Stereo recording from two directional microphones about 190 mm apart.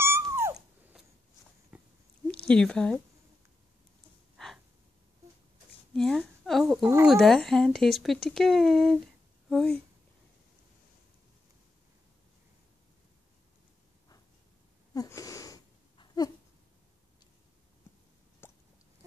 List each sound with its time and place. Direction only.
0.0 s dog: 15° right (ahead or behind)
1.7 s a sound: 10° right (ahead or behind)
2.4 s speech: 5° left (ahead or behind)
5.9 s a woman's voice: centre (ahead or behind)
6.8 s speech: 15° right (ahead or behind)
7.1 s speech: 5° left (ahead or behind)
15.0 s wheeze: 15° left (ahead or behind)
18.4 s a sound: 10° left (ahead or behind)